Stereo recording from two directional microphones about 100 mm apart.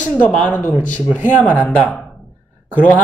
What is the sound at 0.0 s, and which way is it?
Speech, 15° left (ahead or behind).